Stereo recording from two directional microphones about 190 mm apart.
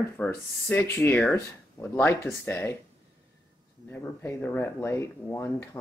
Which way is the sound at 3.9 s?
10° left (ahead or behind).